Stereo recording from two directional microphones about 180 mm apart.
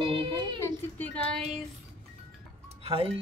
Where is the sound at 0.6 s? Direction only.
10° left (ahead or behind).